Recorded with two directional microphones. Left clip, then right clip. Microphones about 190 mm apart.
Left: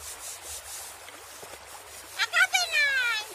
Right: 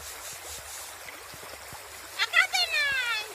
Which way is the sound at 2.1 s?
60° left (ahead or behind).